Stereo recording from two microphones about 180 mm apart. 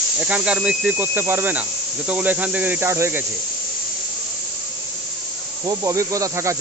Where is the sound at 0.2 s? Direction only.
10° right (ahead or behind).